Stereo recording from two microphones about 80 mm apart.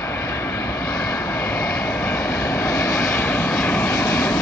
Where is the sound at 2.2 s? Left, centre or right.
Left.